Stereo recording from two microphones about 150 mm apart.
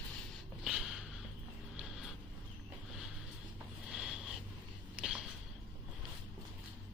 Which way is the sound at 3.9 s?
5° right (ahead or behind).